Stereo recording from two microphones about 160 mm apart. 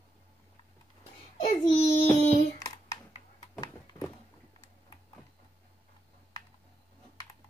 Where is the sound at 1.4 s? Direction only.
45° left (ahead or behind).